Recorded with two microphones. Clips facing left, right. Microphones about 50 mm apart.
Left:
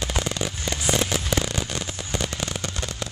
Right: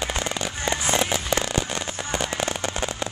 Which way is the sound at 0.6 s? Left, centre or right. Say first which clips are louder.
Right 3 dB; right.